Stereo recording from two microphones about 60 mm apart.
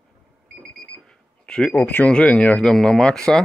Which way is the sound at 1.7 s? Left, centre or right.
Left.